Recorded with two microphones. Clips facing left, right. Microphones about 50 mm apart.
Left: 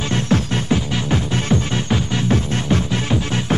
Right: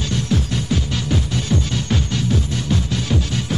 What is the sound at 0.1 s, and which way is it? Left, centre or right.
Music, left.